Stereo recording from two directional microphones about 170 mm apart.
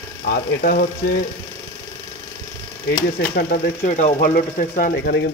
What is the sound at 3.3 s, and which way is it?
Speech, 65° left (ahead or behind).